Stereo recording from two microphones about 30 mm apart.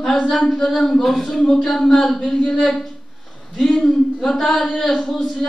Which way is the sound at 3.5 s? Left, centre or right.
Centre.